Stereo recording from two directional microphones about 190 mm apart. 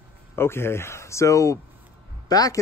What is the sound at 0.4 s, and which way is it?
Speech, 15° left (ahead or behind).